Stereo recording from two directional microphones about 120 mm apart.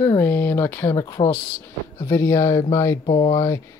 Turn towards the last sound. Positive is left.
turn(degrees=30)  # may be behind; listen again after turning